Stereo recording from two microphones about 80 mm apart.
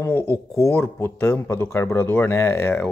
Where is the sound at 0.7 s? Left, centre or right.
Left.